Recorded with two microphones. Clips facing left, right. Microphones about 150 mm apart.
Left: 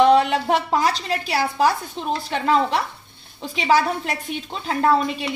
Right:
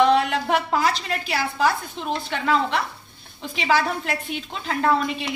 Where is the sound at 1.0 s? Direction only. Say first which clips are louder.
Left 3 dB; 40° left (ahead or behind).